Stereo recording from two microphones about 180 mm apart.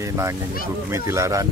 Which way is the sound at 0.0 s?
15° right (ahead or behind).